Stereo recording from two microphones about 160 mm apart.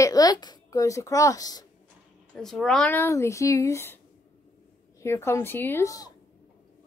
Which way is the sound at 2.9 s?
15° left (ahead or behind).